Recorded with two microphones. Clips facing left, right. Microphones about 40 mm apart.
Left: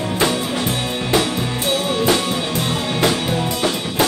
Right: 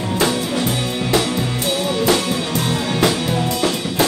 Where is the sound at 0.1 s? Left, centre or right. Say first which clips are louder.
Right 1 dB; centre.